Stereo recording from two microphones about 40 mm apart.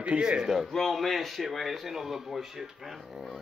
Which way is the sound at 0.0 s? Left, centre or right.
Right.